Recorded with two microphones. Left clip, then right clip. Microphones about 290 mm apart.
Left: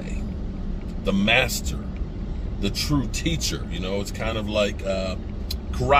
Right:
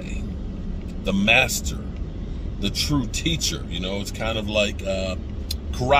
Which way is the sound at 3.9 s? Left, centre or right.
Centre.